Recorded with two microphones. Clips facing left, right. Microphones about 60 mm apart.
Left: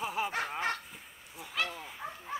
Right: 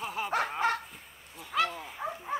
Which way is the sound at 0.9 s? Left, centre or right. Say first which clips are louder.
Even; centre.